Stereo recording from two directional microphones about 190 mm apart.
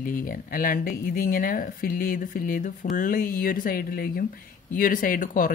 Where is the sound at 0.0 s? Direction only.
45° left (ahead or behind).